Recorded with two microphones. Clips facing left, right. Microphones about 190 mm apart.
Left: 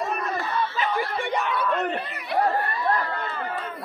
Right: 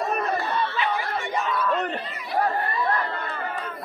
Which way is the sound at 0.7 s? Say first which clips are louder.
Left 1 dB; 60° left (ahead or behind).